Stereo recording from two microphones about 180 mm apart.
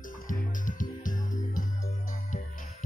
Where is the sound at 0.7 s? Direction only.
45° left (ahead or behind).